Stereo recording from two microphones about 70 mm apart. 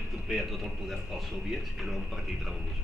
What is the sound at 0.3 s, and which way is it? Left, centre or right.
Speech, centre.